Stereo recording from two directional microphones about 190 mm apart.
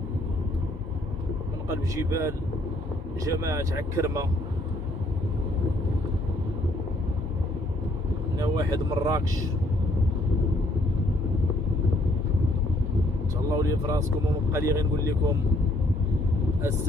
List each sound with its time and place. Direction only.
1.7 s speech: 15° right (ahead or behind)
8.4 s speech: 20° right (ahead or behind)
13.5 s speech: 15° right (ahead or behind)